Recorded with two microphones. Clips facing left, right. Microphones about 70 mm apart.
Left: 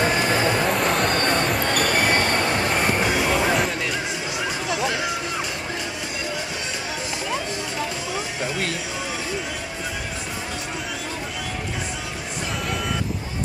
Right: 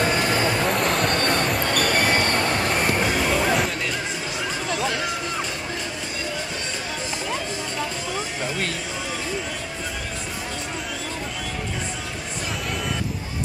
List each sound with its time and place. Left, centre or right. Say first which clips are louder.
0.0 s train: left 1 dB; centre
4.6 s music: left 1 dB; centre